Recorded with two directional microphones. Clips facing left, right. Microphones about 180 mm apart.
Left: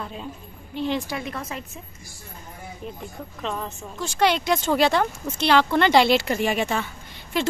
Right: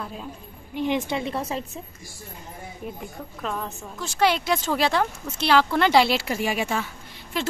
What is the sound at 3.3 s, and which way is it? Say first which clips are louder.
A woman's voice: even; centre (ahead or behind).